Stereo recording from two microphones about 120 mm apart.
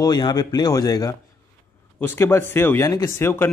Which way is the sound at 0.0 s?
35° left (ahead or behind).